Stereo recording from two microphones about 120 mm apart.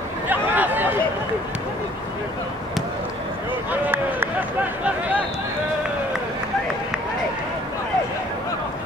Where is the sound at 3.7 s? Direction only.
15° right (ahead or behind).